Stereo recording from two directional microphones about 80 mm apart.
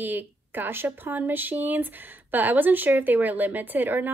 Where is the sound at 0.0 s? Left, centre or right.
Right.